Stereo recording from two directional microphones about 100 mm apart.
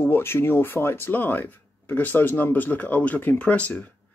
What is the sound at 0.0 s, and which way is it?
Speech, 25° left (ahead or behind).